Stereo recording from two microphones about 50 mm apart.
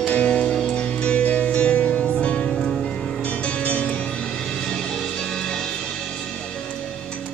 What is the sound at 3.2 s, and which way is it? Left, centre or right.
Music, left.